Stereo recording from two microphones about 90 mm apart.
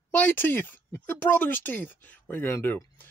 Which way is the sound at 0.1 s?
20° left (ahead or behind).